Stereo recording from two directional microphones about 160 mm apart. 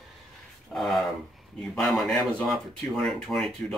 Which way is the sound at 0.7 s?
Centre (ahead or behind).